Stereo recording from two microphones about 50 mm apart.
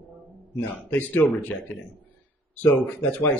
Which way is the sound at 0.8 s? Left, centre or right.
Left.